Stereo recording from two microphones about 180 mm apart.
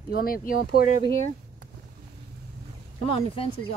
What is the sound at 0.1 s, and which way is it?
Speech, 55° left (ahead or behind).